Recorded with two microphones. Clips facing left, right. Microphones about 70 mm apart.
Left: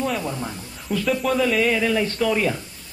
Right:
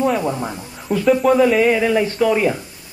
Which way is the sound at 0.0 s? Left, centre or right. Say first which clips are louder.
Right 7 dB; right.